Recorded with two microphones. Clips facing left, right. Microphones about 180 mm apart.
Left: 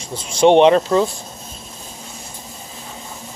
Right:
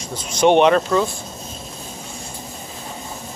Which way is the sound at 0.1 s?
30° left (ahead or behind).